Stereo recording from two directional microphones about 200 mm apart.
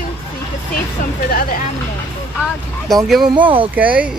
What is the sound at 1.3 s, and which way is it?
Speech, 45° left (ahead or behind).